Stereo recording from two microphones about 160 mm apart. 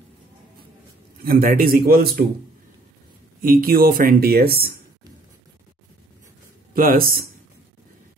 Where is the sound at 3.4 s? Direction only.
65° right (ahead or behind).